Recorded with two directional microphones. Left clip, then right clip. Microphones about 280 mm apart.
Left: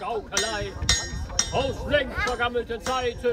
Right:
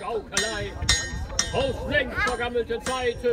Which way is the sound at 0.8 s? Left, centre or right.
Left.